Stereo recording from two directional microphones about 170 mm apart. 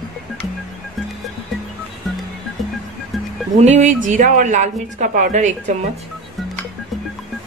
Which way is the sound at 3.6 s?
45° right (ahead or behind).